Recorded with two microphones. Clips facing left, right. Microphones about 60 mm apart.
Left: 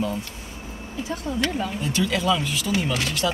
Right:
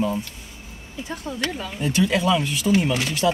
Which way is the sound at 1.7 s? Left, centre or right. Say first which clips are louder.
Right 8 dB; centre.